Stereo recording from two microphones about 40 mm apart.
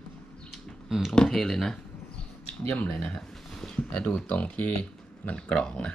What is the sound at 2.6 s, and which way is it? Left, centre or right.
Speech, left.